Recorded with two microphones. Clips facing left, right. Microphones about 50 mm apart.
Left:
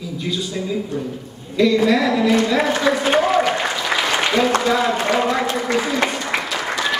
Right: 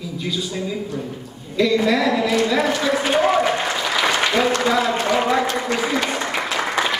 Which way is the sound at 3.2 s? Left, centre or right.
Centre.